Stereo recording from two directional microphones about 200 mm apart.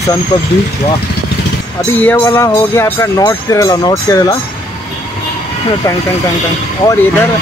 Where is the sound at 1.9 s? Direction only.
10° left (ahead or behind).